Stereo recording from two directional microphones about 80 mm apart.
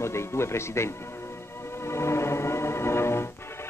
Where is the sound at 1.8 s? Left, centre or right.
Left.